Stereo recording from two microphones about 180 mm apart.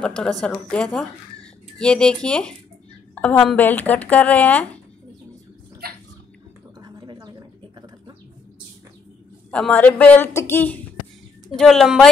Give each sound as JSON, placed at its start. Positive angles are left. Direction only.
{"t": 0.0, "sound": "a woman's voice", "side_deg": 5}
{"t": 6.8, "sound": "a sound", "side_deg": -20}
{"t": 9.5, "sound": "speech", "side_deg": 5}